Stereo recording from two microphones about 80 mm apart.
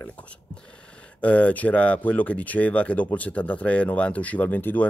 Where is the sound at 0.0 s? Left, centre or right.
Centre.